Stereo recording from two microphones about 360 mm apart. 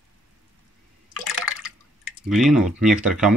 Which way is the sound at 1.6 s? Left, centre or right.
Centre.